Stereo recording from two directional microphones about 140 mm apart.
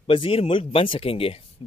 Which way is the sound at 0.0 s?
40° left (ahead or behind).